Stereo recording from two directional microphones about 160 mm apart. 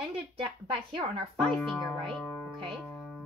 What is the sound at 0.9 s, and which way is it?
Speech, 40° right (ahead or behind).